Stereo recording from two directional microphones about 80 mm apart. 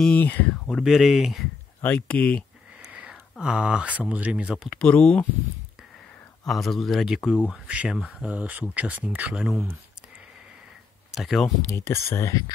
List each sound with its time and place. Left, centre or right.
0.0 s speech: centre
0.7 s speech: centre
1.9 s speech: centre
2.9 s speech: centre
4.6 s speech: centre
6.4 s speech: centre
7.4 s speech: centre
9.3 s speech: centre
11.1 s speech: centre
11.7 s speech: left